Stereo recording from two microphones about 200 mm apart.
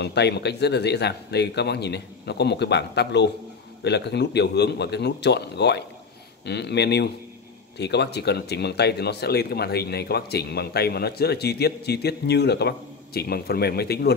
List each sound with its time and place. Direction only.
0.0 s speech: 60° left (ahead or behind)